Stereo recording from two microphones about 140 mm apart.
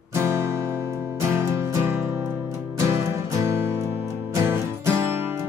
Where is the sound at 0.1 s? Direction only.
20° right (ahead or behind).